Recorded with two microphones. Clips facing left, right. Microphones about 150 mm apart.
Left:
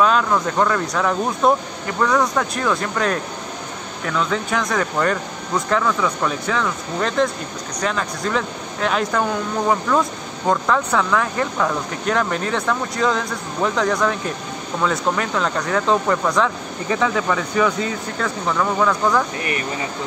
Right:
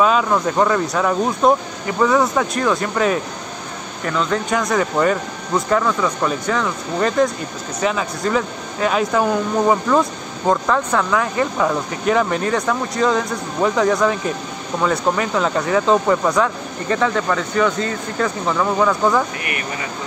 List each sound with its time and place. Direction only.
0.0 s speech: 5° right (ahead or behind)
18.5 s speech: 5° right (ahead or behind)